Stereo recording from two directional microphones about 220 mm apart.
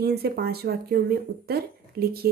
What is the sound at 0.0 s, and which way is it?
Speech, 45° right (ahead or behind).